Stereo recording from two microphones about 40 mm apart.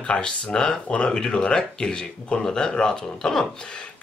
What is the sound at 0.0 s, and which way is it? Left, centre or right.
Speech, left.